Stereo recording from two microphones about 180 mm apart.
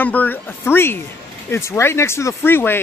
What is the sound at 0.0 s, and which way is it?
Speech, 10° left (ahead or behind).